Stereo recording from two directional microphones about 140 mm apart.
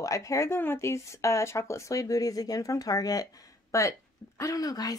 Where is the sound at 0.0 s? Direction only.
20° left (ahead or behind).